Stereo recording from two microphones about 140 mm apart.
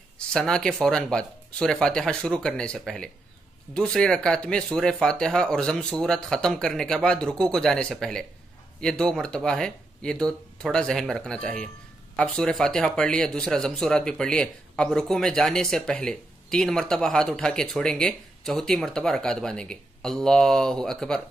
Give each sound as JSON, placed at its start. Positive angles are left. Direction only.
{"t": 0.3, "sound": "a man's voice", "side_deg": 5}